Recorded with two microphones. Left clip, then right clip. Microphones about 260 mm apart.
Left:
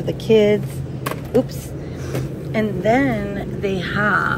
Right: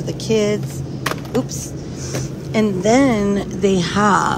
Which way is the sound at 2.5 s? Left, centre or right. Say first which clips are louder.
Right 2 dB; centre.